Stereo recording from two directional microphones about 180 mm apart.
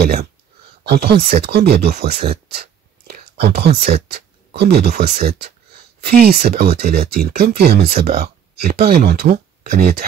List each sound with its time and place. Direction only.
0.0 s speech: 60° right (ahead or behind)